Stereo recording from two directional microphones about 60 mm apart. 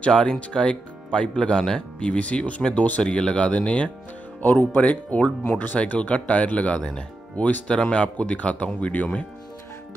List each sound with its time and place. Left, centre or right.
0.0 s speech: centre
3.0 s speech: centre